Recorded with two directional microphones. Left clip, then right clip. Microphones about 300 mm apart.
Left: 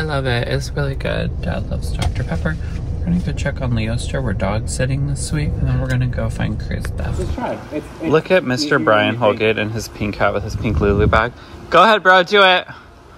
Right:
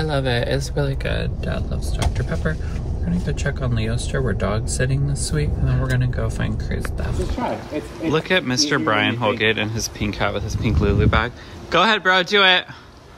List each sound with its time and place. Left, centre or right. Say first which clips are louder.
0.0 s speech: left 1 dB; centre
1.0 s speech: left 3 dB; centre
3.3 s speech: even; centre